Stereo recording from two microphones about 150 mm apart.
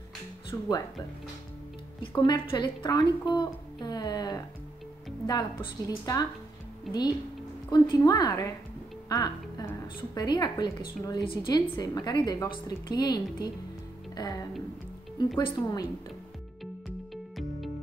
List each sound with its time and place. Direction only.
0.5 s speech: 25° left (ahead or behind)
2.1 s speech: 30° left (ahead or behind)
17.1 s music: centre (ahead or behind)